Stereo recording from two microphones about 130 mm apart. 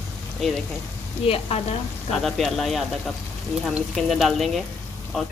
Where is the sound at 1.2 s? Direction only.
50° left (ahead or behind).